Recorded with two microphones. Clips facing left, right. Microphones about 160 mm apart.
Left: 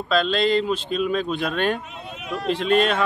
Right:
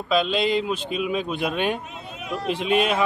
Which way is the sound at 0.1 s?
5° right (ahead or behind).